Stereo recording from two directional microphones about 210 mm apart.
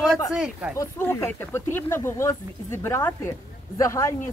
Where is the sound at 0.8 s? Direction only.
15° left (ahead or behind).